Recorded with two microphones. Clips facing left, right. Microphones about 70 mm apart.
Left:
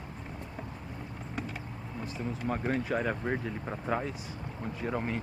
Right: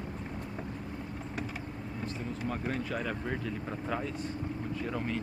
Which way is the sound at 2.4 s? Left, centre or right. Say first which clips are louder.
Left 4 dB; centre.